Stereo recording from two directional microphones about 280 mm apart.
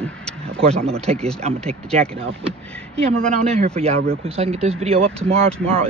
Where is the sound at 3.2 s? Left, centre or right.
Centre.